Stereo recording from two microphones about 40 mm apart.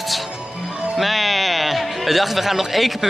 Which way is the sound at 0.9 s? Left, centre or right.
Centre.